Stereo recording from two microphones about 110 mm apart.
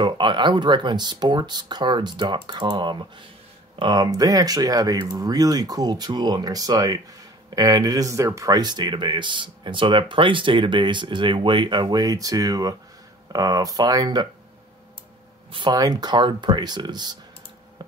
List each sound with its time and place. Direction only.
0.0 s speech: 45° right (ahead or behind)
15.7 s speech: 35° right (ahead or behind)